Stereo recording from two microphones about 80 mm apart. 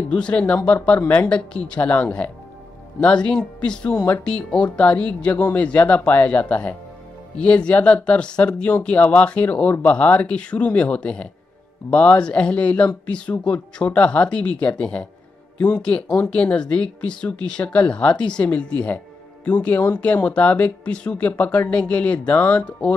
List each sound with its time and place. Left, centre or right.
0.1 s speech: centre